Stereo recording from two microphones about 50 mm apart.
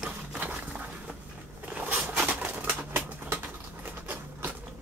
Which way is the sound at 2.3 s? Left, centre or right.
Right.